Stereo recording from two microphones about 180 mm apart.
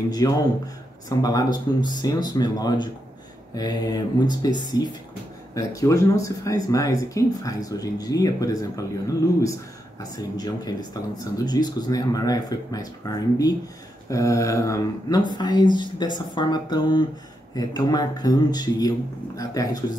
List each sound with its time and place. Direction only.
0.2 s speech: 20° left (ahead or behind)
10.3 s speech: 20° left (ahead or behind)